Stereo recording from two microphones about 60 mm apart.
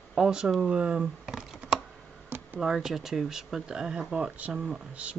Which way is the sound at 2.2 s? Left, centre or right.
Right.